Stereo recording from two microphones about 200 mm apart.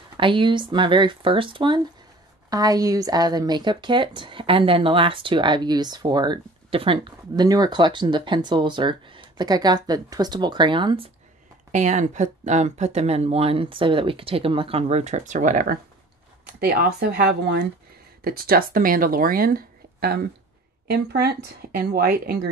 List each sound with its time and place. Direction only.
0.2 s speech: 25° right (ahead or behind)
11.7 s speech: 35° right (ahead or behind)